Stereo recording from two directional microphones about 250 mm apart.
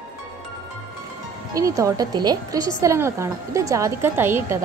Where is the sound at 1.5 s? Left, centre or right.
Centre.